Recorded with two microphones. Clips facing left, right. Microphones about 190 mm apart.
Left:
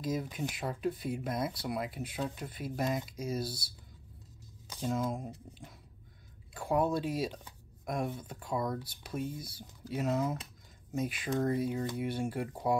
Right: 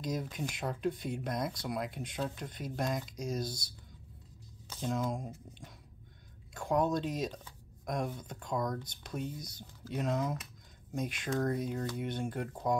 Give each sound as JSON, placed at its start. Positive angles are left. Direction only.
{"t": 0.0, "sound": "speech", "side_deg": 5}
{"t": 4.6, "sound": "squish", "side_deg": 15}
{"t": 4.9, "sound": "speech", "side_deg": 0}
{"t": 6.5, "sound": "speech", "side_deg": 5}